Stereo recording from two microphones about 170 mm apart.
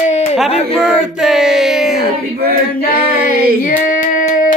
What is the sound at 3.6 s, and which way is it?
Child singing, 50° left (ahead or behind).